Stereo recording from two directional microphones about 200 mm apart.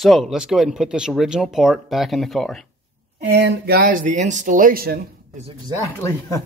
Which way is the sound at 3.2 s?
50° right (ahead or behind).